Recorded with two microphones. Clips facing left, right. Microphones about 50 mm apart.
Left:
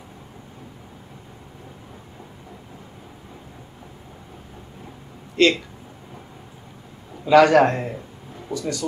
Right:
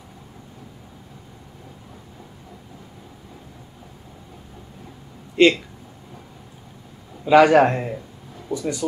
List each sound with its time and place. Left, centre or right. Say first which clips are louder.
5.4 s a man's voice: right 2 dB; centre
7.2 s a man's voice: even; centre
8.5 s speech: even; centre